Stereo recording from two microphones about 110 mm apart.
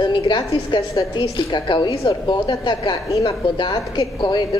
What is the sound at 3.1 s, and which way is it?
Speech, 30° left (ahead or behind).